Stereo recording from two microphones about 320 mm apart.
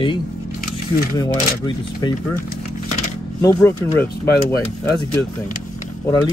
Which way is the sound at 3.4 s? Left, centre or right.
Centre.